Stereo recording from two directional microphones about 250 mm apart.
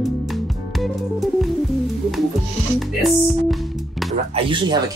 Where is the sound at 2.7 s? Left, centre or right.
Centre.